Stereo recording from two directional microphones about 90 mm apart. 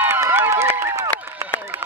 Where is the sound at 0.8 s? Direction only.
30° right (ahead or behind).